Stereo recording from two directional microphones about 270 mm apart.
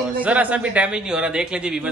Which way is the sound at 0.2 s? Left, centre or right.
Centre.